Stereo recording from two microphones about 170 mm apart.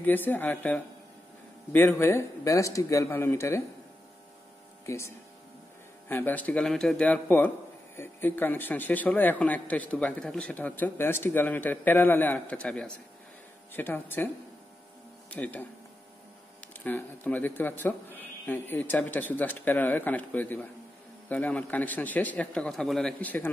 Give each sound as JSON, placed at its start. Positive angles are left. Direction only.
{"t": 0.0, "sound": "a man's voice", "side_deg": 10}
{"t": 4.8, "sound": "a man's voice", "side_deg": 15}
{"t": 16.8, "sound": "a man's voice", "side_deg": 10}